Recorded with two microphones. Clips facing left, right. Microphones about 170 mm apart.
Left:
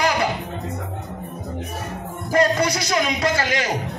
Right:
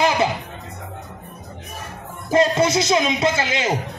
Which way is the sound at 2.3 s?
20° right (ahead or behind).